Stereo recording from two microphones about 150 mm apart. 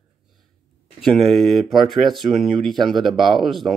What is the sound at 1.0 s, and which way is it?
A man's voice, centre (ahead or behind).